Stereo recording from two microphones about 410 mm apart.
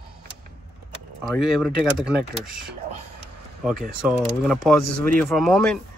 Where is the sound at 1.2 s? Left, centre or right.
Centre.